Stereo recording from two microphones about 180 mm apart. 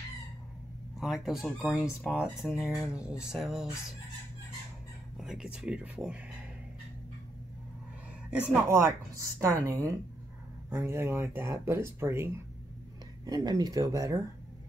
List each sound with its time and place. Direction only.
0.9 s speech: centre (ahead or behind)
5.1 s speech: 5° right (ahead or behind)
8.3 s speech: 10° right (ahead or behind)